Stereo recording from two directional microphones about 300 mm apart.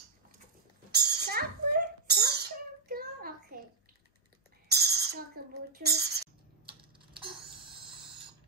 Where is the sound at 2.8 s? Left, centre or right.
Right.